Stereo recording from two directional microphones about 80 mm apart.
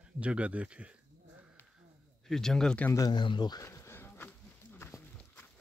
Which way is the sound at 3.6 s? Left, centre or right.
Left.